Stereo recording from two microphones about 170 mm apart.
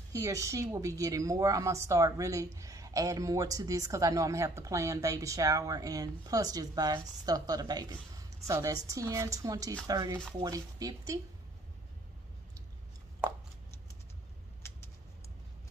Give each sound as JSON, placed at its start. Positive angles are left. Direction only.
{"t": 0.1, "sound": "a woman's voice", "side_deg": -20}